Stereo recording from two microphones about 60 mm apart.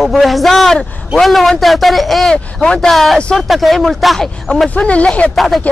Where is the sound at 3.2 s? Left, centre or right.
Centre.